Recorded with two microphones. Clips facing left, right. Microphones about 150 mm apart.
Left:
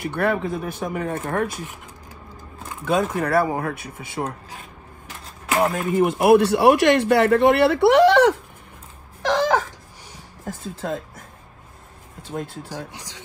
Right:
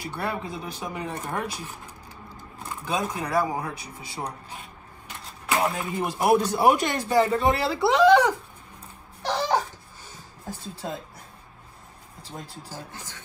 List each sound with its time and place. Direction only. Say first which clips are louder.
0.0 s speech: left 8 dB; 60° left (ahead or behind)
2.8 s speech: left 7 dB; 60° left (ahead or behind)
5.6 s speech: left 9 dB; 50° left (ahead or behind)
9.2 s a sound: left 5 dB; 90° left
12.2 s speech: left 10 dB; 55° left (ahead or behind)
12.6 s speech: left 5 dB; 15° left (ahead or behind)